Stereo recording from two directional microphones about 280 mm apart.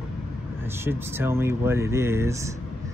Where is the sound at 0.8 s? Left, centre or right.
Centre.